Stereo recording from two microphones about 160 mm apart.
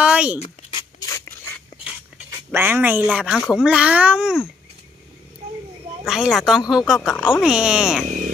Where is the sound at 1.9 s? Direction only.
10° right (ahead or behind).